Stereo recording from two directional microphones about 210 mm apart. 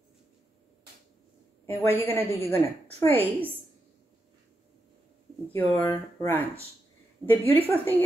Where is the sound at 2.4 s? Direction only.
30° right (ahead or behind).